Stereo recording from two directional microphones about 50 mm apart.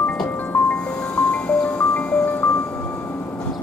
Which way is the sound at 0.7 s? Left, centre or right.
Left.